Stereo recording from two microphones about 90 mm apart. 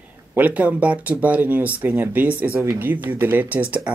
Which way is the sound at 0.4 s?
15° right (ahead or behind).